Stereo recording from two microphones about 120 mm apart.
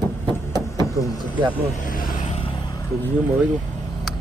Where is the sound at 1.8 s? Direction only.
90° left.